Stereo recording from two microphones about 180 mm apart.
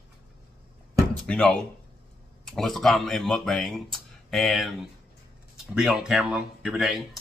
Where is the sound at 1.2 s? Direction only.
5° left (ahead or behind).